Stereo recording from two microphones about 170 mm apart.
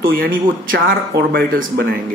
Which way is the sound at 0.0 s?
60° right (ahead or behind).